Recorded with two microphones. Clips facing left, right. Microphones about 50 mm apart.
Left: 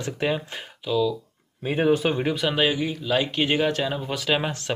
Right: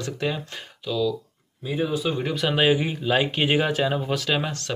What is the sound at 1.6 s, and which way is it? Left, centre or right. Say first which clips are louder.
Speech: left 4 dB; left.